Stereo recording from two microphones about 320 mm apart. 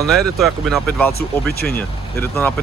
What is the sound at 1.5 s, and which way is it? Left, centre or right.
Speech, left.